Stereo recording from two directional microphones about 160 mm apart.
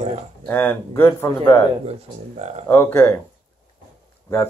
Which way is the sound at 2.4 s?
45° right (ahead or behind).